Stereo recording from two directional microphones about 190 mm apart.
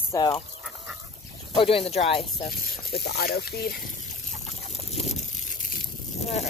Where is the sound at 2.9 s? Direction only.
60° left (ahead or behind).